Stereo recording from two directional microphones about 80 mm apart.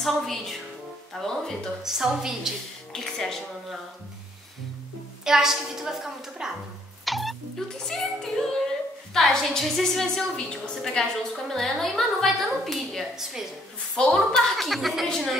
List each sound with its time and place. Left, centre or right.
0.0 s a woman's voice: centre
1.8 s a woman's voice: centre
2.9 s a woman's voice: centre
5.2 s a woman's voice: centre
7.1 s music: centre
9.1 s a woman's voice: centre
13.9 s a woman's voice: centre